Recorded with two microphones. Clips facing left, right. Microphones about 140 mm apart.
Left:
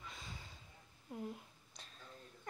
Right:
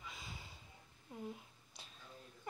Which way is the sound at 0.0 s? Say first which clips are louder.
Even; 10° right (ahead or behind).